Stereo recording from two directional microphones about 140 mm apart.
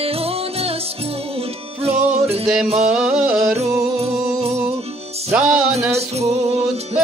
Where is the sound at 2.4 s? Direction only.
Centre (ahead or behind).